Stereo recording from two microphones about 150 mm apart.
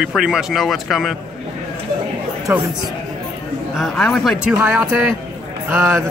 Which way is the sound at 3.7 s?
Centre (ahead or behind).